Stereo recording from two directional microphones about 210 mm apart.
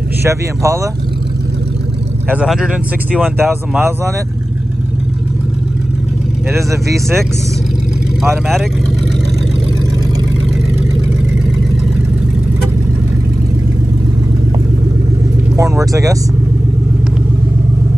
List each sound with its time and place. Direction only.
0.2 s speech: 15° right (ahead or behind)
2.2 s speech: 5° right (ahead or behind)
6.5 s speech: 15° right (ahead or behind)
8.2 s speech: centre (ahead or behind)
15.5 s speech: 15° right (ahead or behind)